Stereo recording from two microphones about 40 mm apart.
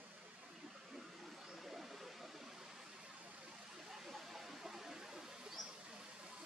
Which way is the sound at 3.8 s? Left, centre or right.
Centre.